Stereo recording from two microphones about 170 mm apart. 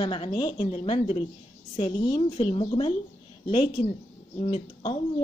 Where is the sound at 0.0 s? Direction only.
30° left (ahead or behind).